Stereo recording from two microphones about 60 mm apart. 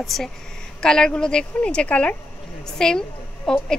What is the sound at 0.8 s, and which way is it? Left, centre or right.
A woman's voice, centre.